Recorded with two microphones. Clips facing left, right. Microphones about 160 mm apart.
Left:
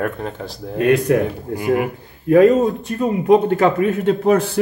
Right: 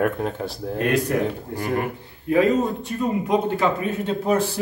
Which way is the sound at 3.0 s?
55° left (ahead or behind).